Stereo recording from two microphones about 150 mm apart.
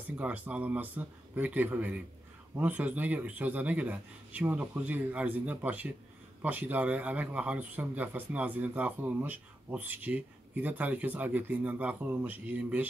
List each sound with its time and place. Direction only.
0.0 s a man's voice: 10° right (ahead or behind)